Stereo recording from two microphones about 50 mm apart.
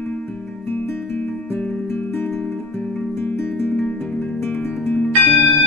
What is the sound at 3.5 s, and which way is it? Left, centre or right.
Music, left.